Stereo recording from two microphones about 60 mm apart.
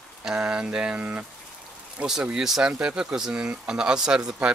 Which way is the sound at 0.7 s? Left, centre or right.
Centre.